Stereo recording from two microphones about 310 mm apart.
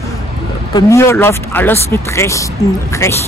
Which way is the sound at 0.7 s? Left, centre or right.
Centre.